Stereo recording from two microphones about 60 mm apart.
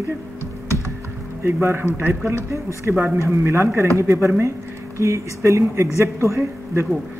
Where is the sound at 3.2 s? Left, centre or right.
Right.